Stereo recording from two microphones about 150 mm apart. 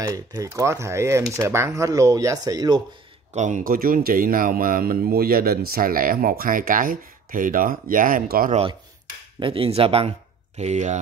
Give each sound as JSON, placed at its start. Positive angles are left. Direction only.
{"t": 0.0, "sound": "speech", "side_deg": -25}
{"t": 3.3, "sound": "speech", "side_deg": -55}
{"t": 9.4, "sound": "speech", "side_deg": -35}
{"t": 10.6, "sound": "speech", "side_deg": -50}